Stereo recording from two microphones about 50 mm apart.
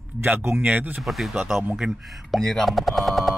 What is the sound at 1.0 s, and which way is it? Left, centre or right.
Speech, centre.